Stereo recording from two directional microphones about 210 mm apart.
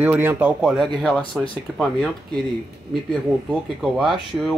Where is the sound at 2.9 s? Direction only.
Centre (ahead or behind).